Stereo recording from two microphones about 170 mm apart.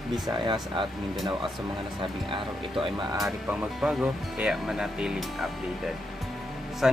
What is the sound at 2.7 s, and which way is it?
Speech, centre (ahead or behind).